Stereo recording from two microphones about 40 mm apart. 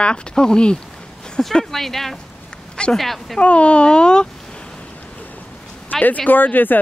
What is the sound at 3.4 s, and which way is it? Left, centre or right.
Speech, left.